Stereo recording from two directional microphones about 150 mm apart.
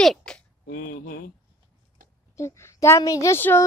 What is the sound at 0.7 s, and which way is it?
Speech, 75° left (ahead or behind).